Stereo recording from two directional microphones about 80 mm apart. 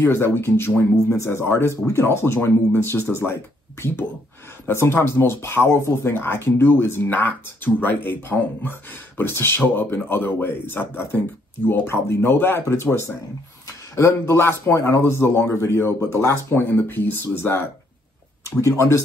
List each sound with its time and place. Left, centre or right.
0.0 s a man's voice: left
4.6 s a man's voice: left